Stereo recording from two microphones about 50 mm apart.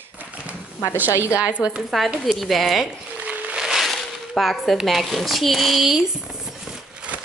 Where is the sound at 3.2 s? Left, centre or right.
Right.